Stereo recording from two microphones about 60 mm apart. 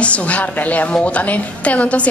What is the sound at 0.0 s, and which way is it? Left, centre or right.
A woman's voice, left.